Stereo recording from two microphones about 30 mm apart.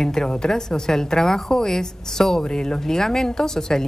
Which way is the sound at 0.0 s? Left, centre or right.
Left.